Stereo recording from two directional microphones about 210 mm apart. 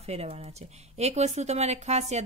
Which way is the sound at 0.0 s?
30° right (ahead or behind).